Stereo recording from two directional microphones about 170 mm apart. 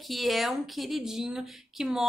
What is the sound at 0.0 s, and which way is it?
A woman's voice, centre (ahead or behind).